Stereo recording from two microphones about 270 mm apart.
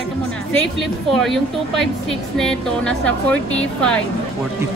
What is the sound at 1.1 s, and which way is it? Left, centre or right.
A woman's voice, centre.